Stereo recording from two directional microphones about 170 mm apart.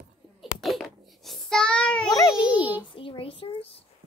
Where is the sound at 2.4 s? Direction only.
30° left (ahead or behind).